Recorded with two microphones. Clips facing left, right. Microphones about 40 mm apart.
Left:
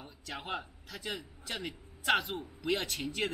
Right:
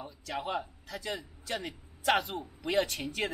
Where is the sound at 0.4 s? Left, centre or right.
Centre.